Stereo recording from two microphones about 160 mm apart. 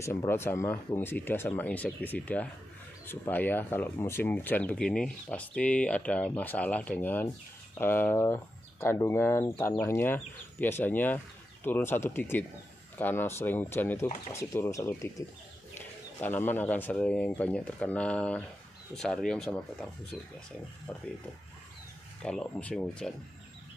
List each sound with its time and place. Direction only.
0.0 s speech: 15° left (ahead or behind)
22.2 s speech: 5° left (ahead or behind)